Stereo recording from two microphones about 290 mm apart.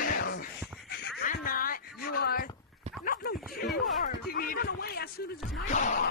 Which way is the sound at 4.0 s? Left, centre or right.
Left.